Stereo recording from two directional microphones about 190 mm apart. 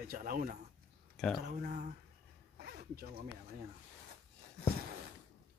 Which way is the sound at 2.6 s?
55° right (ahead or behind).